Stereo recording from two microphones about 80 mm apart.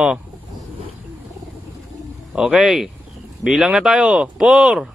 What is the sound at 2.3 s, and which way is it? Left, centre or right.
Speech, centre.